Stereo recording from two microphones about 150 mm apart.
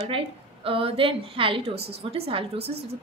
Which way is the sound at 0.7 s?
40° right (ahead or behind).